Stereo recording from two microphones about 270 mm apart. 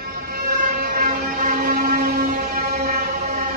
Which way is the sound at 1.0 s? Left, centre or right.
Right.